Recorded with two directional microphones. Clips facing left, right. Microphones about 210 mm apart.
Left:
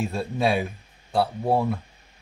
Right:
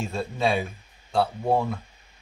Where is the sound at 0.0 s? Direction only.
10° left (ahead or behind).